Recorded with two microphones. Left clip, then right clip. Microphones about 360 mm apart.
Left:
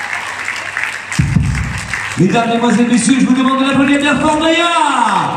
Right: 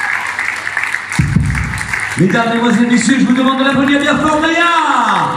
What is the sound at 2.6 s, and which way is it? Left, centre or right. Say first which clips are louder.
Speech: even; centre.